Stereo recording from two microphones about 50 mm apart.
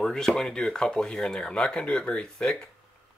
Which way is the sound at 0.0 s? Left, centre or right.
Centre.